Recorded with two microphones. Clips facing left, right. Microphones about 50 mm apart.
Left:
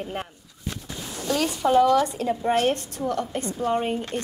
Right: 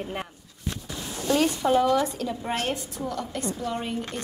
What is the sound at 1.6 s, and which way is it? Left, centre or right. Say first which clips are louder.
Speech: left 7 dB; centre.